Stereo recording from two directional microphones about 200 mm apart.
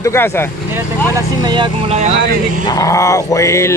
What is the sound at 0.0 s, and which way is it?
Speech, 10° left (ahead or behind).